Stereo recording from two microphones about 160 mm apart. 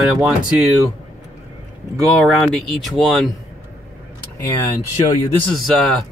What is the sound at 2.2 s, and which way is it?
Speech, centre (ahead or behind).